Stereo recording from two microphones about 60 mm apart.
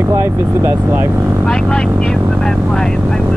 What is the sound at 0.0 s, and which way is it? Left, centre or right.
Speech, right.